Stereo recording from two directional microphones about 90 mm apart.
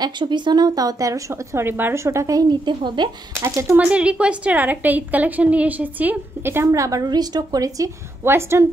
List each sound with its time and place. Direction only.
0.0 s a woman's voice: 60° right (ahead or behind); by 2.4 s 35° right (ahead or behind)
2.6 s speech: 60° right (ahead or behind)
3.3 s a woman's voice: 30° right (ahead or behind)
3.7 s a woman's voice: 15° right (ahead or behind); by 7.9 s 40° right (ahead or behind)
8.2 s a woman's voice: 30° right (ahead or behind)